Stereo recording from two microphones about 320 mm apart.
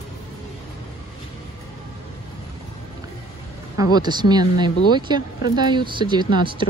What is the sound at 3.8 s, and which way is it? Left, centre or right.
Speech, centre.